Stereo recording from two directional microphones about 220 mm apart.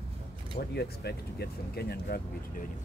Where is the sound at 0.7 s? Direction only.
45° left (ahead or behind).